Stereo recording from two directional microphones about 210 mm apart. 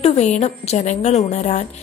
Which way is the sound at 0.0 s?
30° left (ahead or behind).